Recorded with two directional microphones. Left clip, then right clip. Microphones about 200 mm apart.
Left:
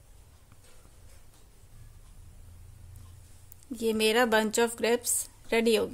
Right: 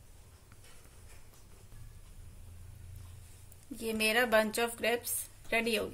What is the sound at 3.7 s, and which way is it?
A woman's voice, 55° left (ahead or behind).